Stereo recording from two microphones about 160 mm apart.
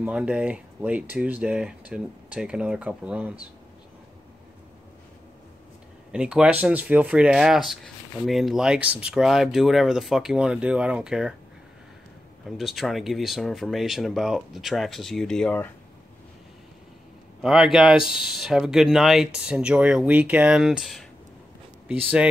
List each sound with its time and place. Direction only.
0.0 s speech: 10° right (ahead or behind)
6.1 s speech: 5° right (ahead or behind)
12.4 s speech: centre (ahead or behind)
17.4 s speech: 5° right (ahead or behind)